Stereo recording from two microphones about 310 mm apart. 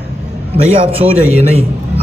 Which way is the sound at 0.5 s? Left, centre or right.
Centre.